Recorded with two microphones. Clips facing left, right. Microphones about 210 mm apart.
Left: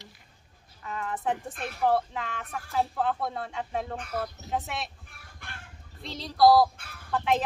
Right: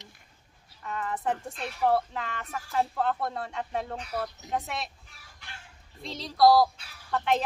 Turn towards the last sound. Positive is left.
turn(degrees=0)  # may be behind; listen again after turning